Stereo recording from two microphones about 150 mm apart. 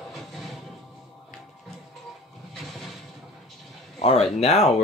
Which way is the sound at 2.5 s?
Centre (ahead or behind).